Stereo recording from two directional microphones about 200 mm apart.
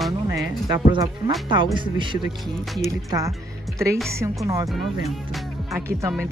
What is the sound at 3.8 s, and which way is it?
Speech, 15° right (ahead or behind).